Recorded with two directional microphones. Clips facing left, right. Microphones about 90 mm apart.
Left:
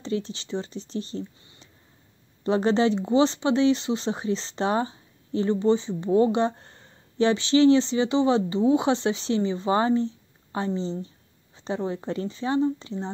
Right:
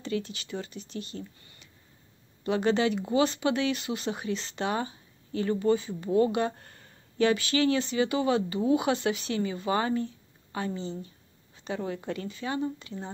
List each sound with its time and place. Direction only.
0.0 s speech: 30° left (ahead or behind)